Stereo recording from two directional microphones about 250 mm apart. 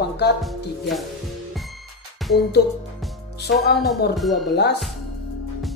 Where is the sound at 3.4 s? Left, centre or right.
Left.